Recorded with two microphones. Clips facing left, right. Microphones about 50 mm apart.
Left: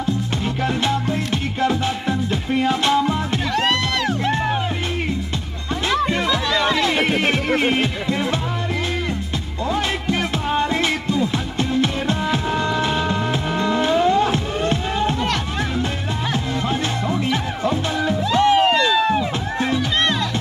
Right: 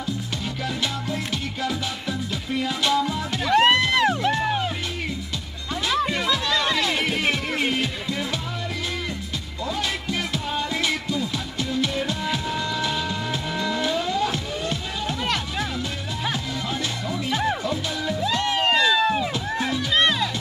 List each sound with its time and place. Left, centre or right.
1.6 s music: left
3.5 s music: right
6.2 s music: centre
7.0 s music: left
10.0 s music: left
17.1 s music: left
18.3 s music: left
18.6 s a sound: centre
20.0 s music: centre